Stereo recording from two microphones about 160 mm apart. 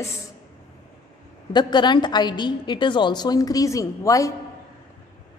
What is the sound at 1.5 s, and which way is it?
A woman's voice, 25° left (ahead or behind).